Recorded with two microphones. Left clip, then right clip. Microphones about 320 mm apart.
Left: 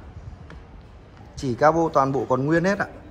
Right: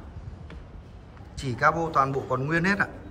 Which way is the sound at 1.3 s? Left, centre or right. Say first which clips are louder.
Left 5 dB; centre.